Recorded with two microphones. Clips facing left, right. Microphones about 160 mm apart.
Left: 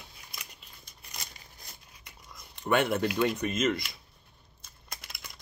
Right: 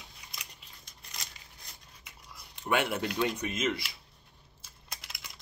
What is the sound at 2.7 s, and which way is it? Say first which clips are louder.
Speech: left 4 dB; 10° right (ahead or behind).